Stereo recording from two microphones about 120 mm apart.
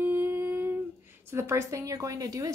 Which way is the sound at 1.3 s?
20° right (ahead or behind).